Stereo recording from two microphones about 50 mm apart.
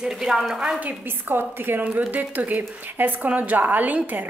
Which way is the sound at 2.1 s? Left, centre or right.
Right.